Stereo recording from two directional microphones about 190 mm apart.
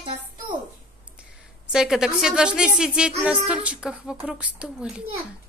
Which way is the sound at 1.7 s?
5° right (ahead or behind).